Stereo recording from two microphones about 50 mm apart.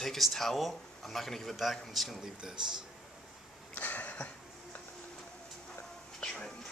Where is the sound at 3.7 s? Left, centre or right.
Left.